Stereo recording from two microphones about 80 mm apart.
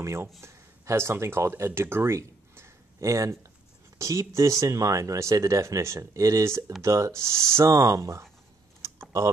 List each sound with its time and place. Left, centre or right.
0.0 s a man's voice: right
8.8 s typing: right